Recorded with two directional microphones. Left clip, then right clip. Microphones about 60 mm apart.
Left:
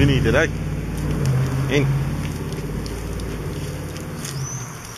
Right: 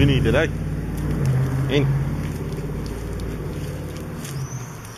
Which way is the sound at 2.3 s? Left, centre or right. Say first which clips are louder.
Left 1 dB; centre.